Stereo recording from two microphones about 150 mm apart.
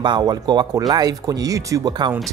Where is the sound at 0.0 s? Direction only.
30° right (ahead or behind).